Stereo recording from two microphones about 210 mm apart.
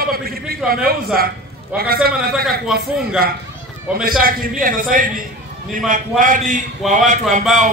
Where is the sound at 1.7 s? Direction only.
5° right (ahead or behind).